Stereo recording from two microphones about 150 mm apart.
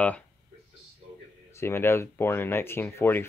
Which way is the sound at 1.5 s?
15° left (ahead or behind).